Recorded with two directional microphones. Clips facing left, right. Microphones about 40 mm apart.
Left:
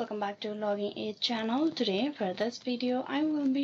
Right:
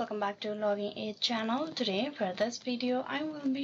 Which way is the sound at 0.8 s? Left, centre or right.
Centre.